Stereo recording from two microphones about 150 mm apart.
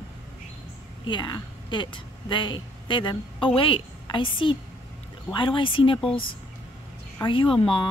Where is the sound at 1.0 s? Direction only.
30° left (ahead or behind).